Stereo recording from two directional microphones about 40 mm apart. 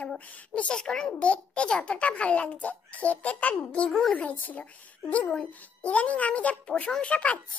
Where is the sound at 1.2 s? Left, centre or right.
Left.